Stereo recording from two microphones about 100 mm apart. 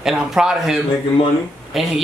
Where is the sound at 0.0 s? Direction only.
5° right (ahead or behind).